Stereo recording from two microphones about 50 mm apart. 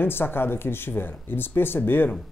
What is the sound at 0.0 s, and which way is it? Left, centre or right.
Speech, left.